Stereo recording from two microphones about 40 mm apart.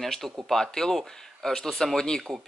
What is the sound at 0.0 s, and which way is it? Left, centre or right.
Speech, centre.